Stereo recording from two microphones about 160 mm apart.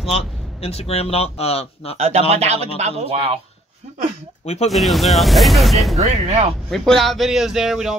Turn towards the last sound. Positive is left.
turn(degrees=0)  # may be behind; listen again after turning